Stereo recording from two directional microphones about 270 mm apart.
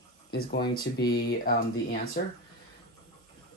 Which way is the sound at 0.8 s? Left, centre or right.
Left.